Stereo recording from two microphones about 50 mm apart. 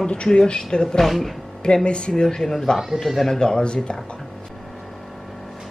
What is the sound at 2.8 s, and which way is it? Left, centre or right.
Speech, centre.